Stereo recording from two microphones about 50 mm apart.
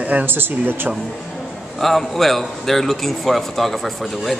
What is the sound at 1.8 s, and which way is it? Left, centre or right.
A man's voice, centre.